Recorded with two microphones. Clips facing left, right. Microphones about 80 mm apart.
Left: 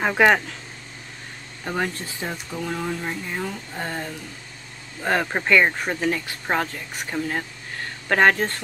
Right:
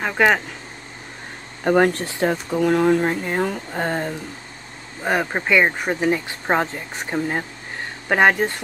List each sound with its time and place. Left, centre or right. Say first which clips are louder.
0.0 s speech: even; centre
1.6 s speech: right 10 dB; right
5.0 s speech: right 1 dB; centre
8.1 s speech: right 2 dB; centre